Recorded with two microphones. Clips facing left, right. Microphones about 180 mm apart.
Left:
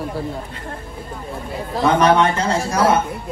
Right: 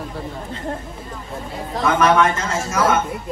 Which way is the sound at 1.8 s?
30° left (ahead or behind).